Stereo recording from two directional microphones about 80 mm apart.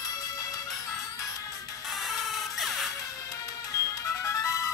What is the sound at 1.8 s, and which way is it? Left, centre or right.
Music, centre.